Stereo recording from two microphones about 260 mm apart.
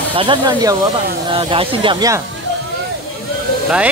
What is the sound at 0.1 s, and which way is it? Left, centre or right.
Speech, centre.